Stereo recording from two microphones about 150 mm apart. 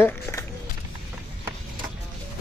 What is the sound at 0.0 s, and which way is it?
Run, 15° left (ahead or behind).